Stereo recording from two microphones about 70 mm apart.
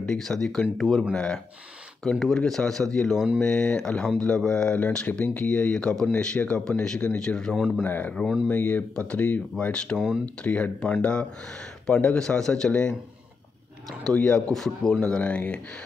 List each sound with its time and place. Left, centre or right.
0.0 s speech: centre
7.5 s speech: centre
7.8 s speech: left; by 12.9 s centre
14.1 s speech: centre